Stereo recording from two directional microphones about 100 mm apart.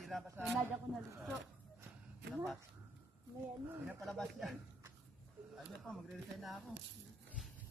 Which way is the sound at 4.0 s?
Centre (ahead or behind).